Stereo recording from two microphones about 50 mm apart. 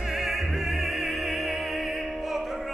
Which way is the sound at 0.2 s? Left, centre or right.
Centre.